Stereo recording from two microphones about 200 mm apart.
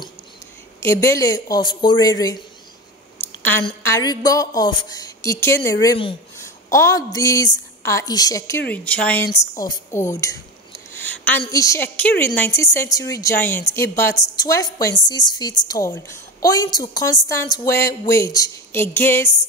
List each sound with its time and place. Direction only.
0.8 s a woman's voice: 15° left (ahead or behind)
3.2 s a sound: 10° left (ahead or behind)
3.8 s a woman's voice: 15° left (ahead or behind)
11.2 s a woman's voice: 15° left (ahead or behind)